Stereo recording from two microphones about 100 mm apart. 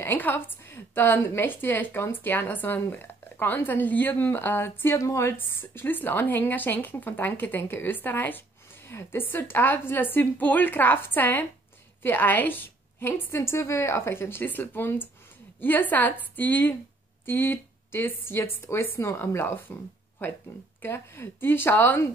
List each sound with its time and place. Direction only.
0.0 s a woman's voice: 20° left (ahead or behind)